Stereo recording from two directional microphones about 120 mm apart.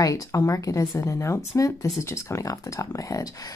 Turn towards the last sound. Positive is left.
turn(degrees=30)  # may be behind; listen again after turning